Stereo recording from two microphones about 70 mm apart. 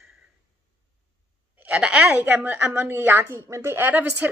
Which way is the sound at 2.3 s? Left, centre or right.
Right.